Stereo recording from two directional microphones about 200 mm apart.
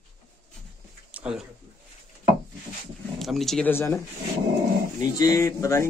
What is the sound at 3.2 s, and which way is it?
Speech, centre (ahead or behind).